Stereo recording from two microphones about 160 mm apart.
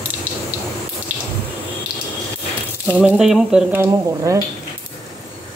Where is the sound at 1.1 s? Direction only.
10° right (ahead or behind).